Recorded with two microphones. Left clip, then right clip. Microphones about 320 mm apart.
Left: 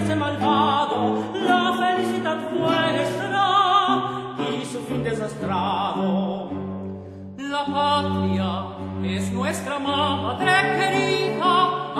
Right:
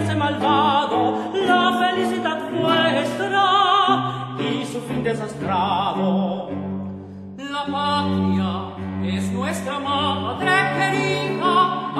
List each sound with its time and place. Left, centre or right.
0.0 s music: right
5.0 s music: right
7.5 s mantra: left
9.4 s music: left